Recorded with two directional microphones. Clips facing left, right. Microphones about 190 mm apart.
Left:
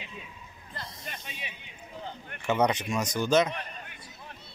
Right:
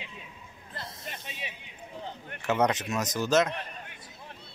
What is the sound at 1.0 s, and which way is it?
Snake, 30° right (ahead or behind).